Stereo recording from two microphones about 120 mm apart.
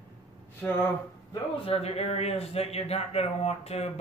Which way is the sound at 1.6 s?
55° left (ahead or behind).